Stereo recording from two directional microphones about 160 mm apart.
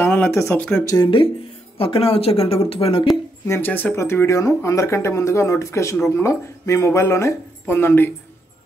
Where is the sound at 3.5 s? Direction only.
10° left (ahead or behind).